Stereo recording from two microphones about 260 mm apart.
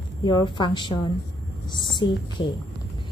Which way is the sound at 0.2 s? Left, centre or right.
Centre.